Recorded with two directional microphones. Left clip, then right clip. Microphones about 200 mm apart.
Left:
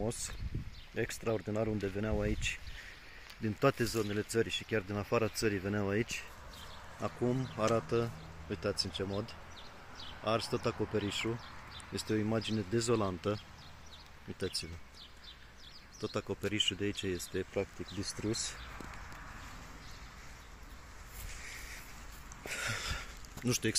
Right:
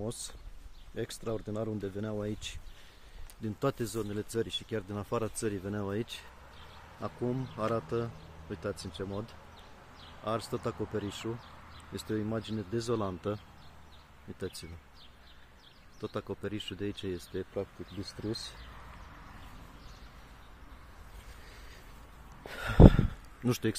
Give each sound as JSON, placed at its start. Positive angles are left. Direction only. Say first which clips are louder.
{"t": 0.0, "sound": "speech", "louder": "left 1 dB", "side_deg": 5}
{"t": 7.5, "sound": "speech", "louder": "left 2 dB", "side_deg": 5}
{"t": 14.4, "sound": "speech", "louder": "left 3 dB", "side_deg": 5}
{"t": 16.0, "sound": "speech", "louder": "left 1 dB", "side_deg": 0}
{"t": 22.5, "sound": "a sound", "louder": "right 13 dB", "side_deg": -30}